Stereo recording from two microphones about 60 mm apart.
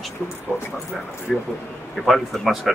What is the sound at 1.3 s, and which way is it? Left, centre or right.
Speech, centre.